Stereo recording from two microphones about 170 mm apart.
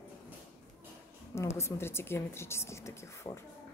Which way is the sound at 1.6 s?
15° left (ahead or behind).